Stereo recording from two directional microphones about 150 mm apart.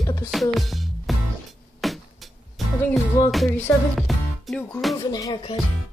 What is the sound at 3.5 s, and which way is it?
Speech, 15° left (ahead or behind).